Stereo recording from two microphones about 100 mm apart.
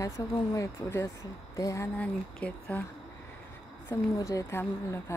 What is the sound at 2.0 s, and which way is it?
Speech, 15° left (ahead or behind).